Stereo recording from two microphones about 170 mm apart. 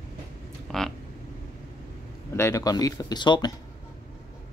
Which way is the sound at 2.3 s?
15° left (ahead or behind).